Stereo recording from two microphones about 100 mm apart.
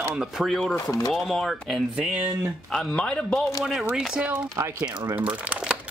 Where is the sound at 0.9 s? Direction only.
35° left (ahead or behind).